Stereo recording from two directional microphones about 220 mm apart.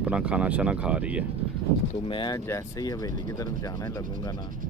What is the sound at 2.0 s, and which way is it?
Speech, 20° left (ahead or behind).